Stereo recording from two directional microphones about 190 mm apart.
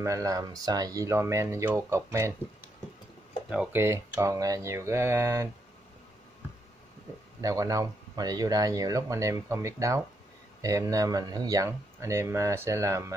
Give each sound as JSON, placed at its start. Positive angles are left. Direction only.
{"t": 0.0, "sound": "speech", "side_deg": -15}
{"t": 3.4, "sound": "speech", "side_deg": -5}
{"t": 7.4, "sound": "speech", "side_deg": -15}